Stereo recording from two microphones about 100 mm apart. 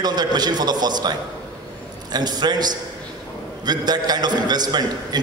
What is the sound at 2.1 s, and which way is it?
A man's voice, 45° right (ahead or behind).